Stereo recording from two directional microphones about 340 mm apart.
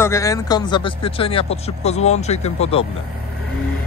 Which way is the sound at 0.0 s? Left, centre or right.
Centre.